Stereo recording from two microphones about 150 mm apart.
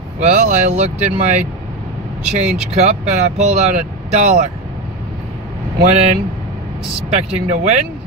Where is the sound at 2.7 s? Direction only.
50° right (ahead or behind).